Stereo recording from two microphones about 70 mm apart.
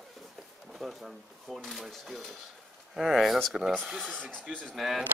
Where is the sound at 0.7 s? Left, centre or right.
Centre.